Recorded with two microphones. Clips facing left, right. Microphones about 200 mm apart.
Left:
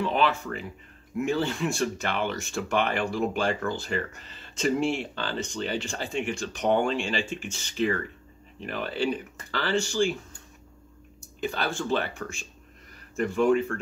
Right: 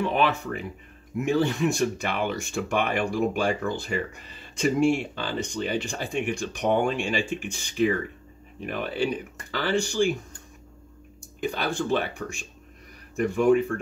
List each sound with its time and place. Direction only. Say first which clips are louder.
0.0 s speech: right 1 dB; 15° right (ahead or behind)
11.4 s speech: right 2 dB; 15° right (ahead or behind)